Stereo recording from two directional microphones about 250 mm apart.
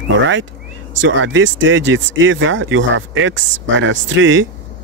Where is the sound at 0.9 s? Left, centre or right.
Right.